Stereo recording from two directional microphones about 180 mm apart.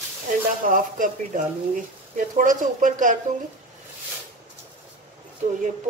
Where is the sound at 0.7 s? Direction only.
45° right (ahead or behind).